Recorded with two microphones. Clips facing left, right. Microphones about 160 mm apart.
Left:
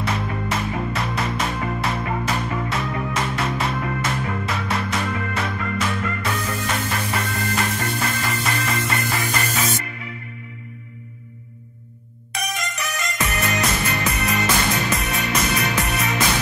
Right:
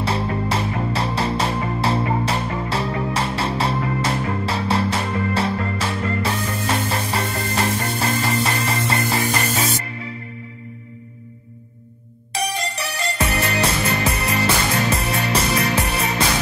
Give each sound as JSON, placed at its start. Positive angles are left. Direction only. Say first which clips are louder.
{"t": 0.0, "sound": "music", "louder": "right 3 dB", "side_deg": -30}
{"t": 12.4, "sound": "music", "louder": "right 4 dB", "side_deg": -30}